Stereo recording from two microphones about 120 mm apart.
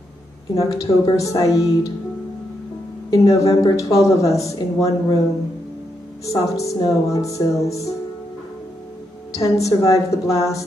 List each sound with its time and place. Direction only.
0.6 s speech: 25° left (ahead or behind)
3.1 s speech: 25° left (ahead or behind)
6.2 s speech: 25° left (ahead or behind)
9.3 s speech: 25° left (ahead or behind)